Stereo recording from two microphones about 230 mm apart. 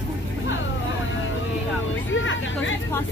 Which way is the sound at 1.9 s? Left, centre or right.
Left.